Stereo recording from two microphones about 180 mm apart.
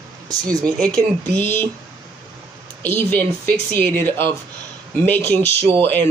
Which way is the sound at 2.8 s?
10° left (ahead or behind).